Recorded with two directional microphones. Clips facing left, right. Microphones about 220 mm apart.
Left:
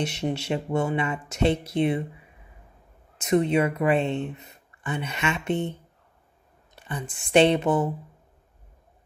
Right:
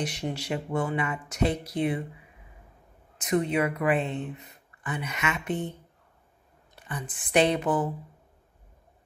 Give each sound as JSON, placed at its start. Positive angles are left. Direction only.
{"t": 0.0, "sound": "speech", "side_deg": 25}
{"t": 3.2, "sound": "speech", "side_deg": 25}